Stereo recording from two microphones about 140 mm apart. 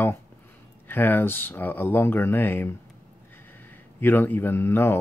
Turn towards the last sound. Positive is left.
turn(degrees=15)  # may be behind; listen again after turning